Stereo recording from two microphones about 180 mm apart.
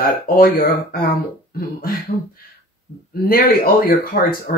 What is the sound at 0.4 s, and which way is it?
Speech, 55° left (ahead or behind).